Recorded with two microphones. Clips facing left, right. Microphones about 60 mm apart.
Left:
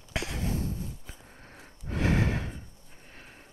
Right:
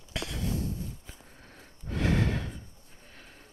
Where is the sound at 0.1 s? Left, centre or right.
Left.